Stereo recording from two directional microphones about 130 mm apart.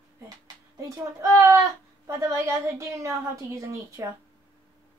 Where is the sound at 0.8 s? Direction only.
25° right (ahead or behind).